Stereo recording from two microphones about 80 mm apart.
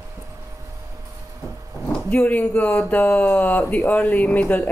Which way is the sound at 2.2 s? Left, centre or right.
Left.